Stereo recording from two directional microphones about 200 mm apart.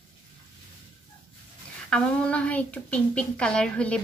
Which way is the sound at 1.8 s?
5° left (ahead or behind).